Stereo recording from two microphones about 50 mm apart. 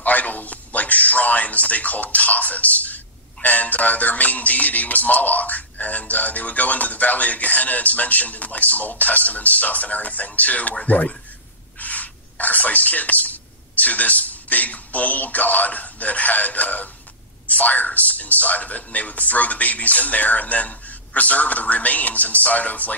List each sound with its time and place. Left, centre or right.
0.0 s a man's voice: left
3.4 s music: left
10.9 s speech: left
17.5 s music: left